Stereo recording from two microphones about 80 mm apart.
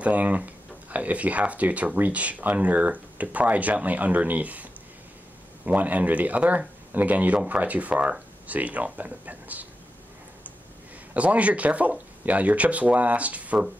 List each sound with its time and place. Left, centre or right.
0.0 s speech: centre
5.7 s speech: centre
11.1 s speech: centre